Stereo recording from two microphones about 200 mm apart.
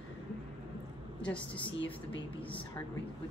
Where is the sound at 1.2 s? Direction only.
5° left (ahead or behind).